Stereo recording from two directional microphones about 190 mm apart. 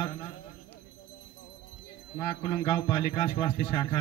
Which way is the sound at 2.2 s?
25° left (ahead or behind).